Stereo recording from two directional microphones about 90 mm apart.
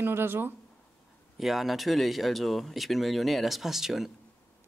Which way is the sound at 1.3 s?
Centre (ahead or behind).